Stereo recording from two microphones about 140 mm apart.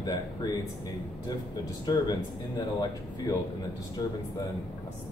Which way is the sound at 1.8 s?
30° left (ahead or behind).